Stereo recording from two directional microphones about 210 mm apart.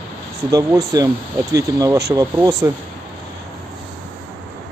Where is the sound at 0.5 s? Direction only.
15° right (ahead or behind).